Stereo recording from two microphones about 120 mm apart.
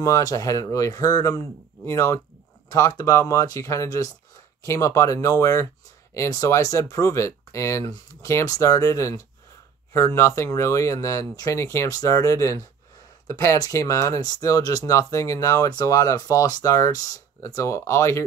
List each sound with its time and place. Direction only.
0.0 s speech: 30° left (ahead or behind)